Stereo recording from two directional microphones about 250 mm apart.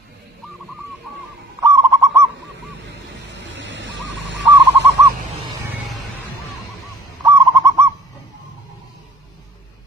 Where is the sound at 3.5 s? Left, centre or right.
Right.